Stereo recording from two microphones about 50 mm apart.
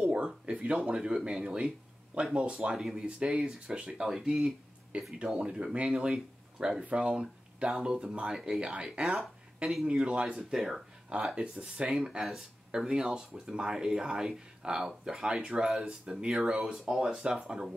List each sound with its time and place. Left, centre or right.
0.0 s speech: centre
2.8 s speech: centre
3.2 s speech: centre
6.8 s speech: right; by 10.8 s centre
11.3 s speech: centre
16.7 s speech: centre